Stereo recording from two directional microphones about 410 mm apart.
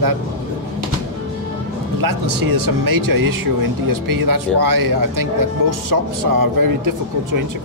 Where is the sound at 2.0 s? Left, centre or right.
Right.